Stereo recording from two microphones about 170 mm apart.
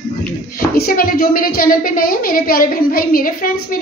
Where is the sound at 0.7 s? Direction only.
60° left (ahead or behind).